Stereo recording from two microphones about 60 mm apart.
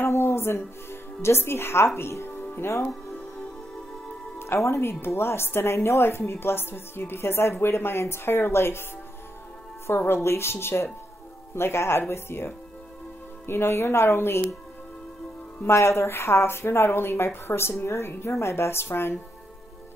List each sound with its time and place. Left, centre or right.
0.0 s a woman's voice: left
4.6 s a woman's voice: left
9.8 s a woman's voice: left
15.6 s a woman's voice: left